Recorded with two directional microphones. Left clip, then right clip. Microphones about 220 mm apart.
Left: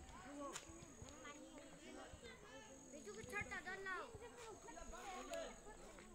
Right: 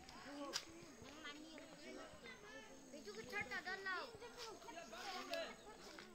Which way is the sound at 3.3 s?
25° left (ahead or behind).